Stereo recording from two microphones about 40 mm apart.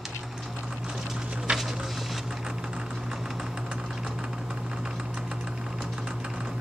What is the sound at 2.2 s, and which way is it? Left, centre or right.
Typing, centre.